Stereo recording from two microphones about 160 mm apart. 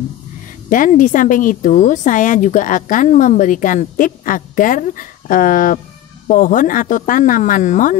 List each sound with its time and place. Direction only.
0.7 s speech: 55° left (ahead or behind)